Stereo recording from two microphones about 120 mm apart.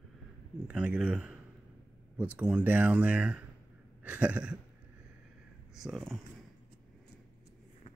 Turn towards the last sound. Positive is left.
turn(degrees=0)  # may be behind; listen again after turning